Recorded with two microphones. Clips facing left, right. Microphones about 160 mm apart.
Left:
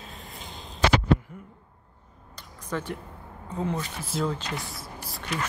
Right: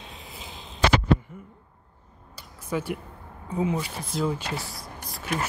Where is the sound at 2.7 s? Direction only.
10° right (ahead or behind).